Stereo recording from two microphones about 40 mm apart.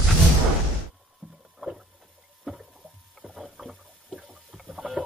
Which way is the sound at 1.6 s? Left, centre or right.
Centre.